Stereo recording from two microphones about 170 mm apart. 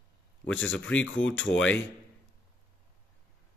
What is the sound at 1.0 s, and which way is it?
Speech, 90° left.